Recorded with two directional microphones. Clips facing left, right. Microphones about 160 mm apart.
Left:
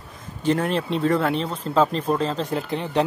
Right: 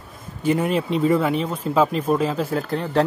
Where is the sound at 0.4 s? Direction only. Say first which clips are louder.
Right 1 dB; 10° right (ahead or behind).